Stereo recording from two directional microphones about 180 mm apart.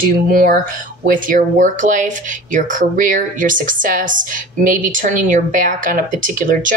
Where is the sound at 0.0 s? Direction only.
50° right (ahead or behind).